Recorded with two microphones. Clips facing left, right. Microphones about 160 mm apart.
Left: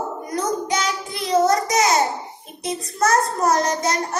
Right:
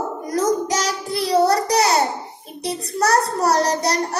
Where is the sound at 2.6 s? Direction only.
35° right (ahead or behind).